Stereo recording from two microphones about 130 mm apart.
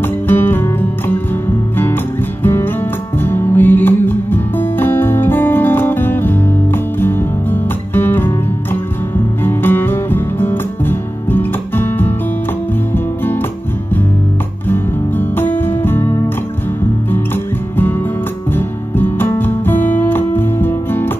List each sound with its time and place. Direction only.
0.0 s music: 15° left (ahead or behind)
9.4 s music: 15° left (ahead or behind)
14.7 s music: 15° left (ahead or behind)
18.5 s music: 15° left (ahead or behind)